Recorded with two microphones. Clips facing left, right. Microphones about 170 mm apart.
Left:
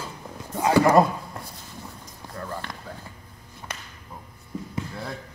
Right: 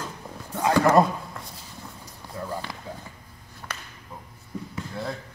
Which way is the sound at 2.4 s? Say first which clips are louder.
Right 2 dB; 10° right (ahead or behind).